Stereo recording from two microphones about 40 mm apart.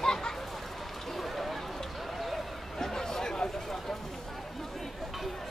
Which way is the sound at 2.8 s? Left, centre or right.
Centre.